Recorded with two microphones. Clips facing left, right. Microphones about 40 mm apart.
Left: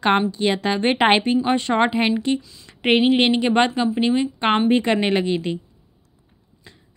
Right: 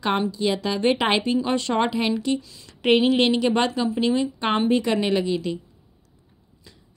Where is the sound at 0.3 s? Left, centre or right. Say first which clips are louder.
Left 3 dB; left.